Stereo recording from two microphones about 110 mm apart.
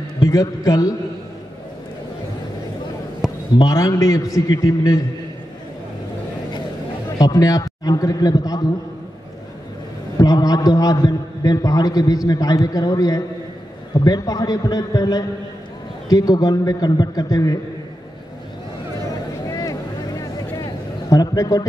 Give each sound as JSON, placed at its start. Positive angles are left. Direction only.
{"t": 0.2, "sound": "a man's voice", "side_deg": 35}
{"t": 3.2, "sound": "a sound", "side_deg": -5}
{"t": 3.5, "sound": "a man's voice", "side_deg": 35}
{"t": 7.2, "sound": "a man's voice", "side_deg": 35}
{"t": 10.1, "sound": "a man's voice", "side_deg": 35}
{"t": 19.5, "sound": "a sound", "side_deg": 35}